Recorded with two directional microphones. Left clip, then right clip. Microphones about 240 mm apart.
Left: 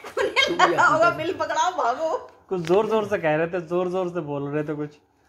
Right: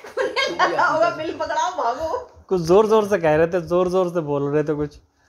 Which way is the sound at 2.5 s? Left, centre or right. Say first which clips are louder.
Right 6 dB; right.